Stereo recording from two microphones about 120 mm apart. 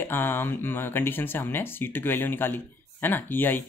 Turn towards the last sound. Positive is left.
turn(degrees=15)  # may be behind; listen again after turning